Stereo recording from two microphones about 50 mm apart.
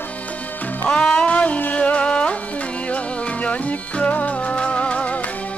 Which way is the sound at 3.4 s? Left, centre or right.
Left.